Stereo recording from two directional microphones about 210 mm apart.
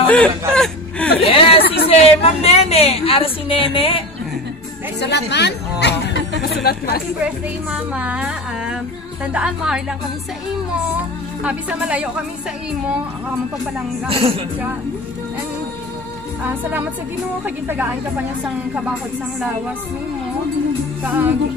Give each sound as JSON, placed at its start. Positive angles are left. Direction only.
{"t": 0.0, "sound": "speech", "side_deg": 5}
{"t": 0.5, "sound": "whimper", "side_deg": 5}
{"t": 1.2, "sound": "a woman's voice", "side_deg": 25}
{"t": 5.3, "sound": "speech", "side_deg": 55}
{"t": 7.7, "sound": "music", "side_deg": -5}
{"t": 11.4, "sound": "music", "side_deg": -5}
{"t": 14.0, "sound": "speech", "side_deg": -25}
{"t": 21.0, "sound": "music", "side_deg": -10}